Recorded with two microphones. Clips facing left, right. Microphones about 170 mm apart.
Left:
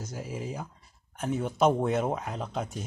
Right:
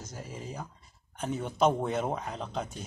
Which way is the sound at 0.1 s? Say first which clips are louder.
Left 5 dB; 10° left (ahead or behind).